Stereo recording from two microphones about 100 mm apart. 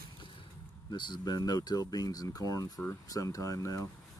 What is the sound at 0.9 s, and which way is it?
Speech, 45° left (ahead or behind).